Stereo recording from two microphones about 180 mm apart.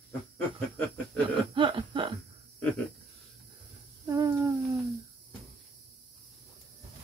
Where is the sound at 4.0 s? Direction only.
20° right (ahead or behind).